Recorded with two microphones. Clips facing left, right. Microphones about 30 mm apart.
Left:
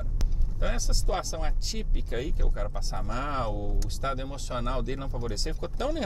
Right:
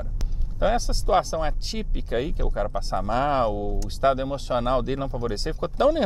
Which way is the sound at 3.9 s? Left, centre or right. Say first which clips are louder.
Right 12 dB; right.